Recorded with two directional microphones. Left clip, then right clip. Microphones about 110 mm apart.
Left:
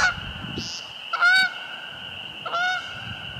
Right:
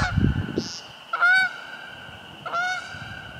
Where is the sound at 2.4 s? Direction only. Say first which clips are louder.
Left 1 dB; centre (ahead or behind).